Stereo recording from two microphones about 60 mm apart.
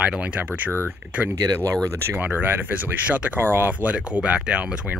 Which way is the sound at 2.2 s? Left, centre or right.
Right.